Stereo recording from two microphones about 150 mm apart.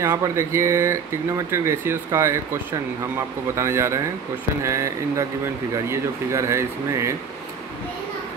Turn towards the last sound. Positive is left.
turn(degrees=-20)  # may be behind; listen again after turning